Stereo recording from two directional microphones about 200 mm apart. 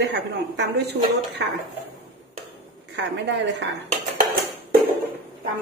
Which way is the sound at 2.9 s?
60° right (ahead or behind).